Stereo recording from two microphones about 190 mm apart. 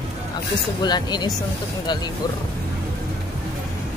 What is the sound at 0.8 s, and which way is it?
Speech, 20° left (ahead or behind).